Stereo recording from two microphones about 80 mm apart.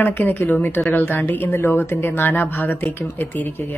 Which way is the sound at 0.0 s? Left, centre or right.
Left.